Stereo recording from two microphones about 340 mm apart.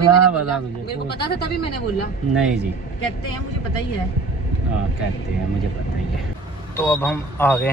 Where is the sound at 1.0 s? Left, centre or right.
Left.